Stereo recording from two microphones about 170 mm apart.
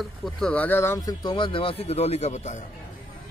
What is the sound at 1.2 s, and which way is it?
A man's voice, 30° left (ahead or behind).